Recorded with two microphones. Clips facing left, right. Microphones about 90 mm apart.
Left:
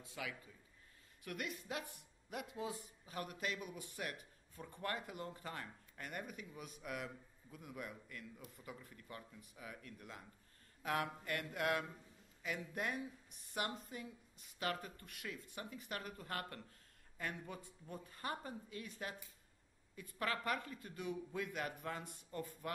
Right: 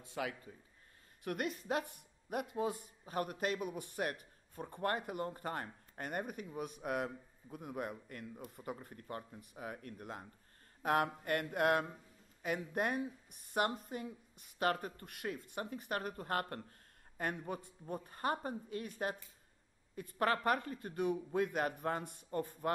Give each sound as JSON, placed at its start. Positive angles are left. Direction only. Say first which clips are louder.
{"t": 0.0, "sound": "a man's voice", "louder": "right 7 dB", "side_deg": -50}
{"t": 10.8, "sound": "mantra", "louder": "right 7 dB", "side_deg": -50}
{"t": 11.2, "sound": "a man's voice", "louder": "right 7 dB", "side_deg": -50}